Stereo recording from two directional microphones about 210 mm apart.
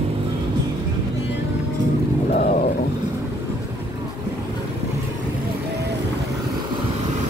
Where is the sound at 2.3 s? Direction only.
40° left (ahead or behind).